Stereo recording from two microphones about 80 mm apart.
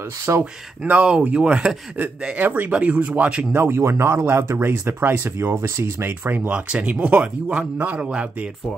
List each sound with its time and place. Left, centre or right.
0.4 s speech: centre
3.5 s speech: right
4.6 s speech: right
6.0 s speech: right